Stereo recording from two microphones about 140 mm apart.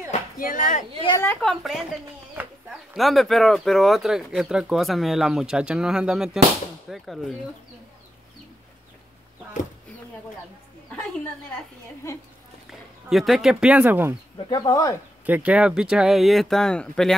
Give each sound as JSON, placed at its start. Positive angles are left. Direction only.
{"t": 0.4, "sound": "speech", "side_deg": 80}
{"t": 1.4, "sound": "speech", "side_deg": 0}
{"t": 2.4, "sound": "a sound", "side_deg": -10}
{"t": 2.9, "sound": "speech", "side_deg": 0}
{"t": 13.1, "sound": "speech", "side_deg": 0}
{"t": 14.5, "sound": "speech", "side_deg": 30}
{"t": 15.2, "sound": "speech", "side_deg": -10}